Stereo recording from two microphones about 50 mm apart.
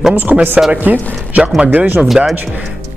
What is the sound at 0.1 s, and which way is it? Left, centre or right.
Speech, right.